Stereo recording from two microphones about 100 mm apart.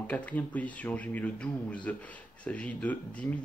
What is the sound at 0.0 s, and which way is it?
Speech, 15° left (ahead or behind).